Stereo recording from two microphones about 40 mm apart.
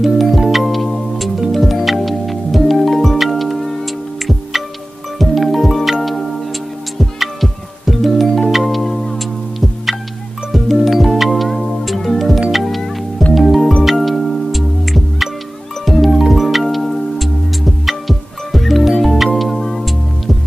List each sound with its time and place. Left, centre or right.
0.0 s music: centre
7.0 s music: centre
10.5 s music: centre
12.6 s music: centre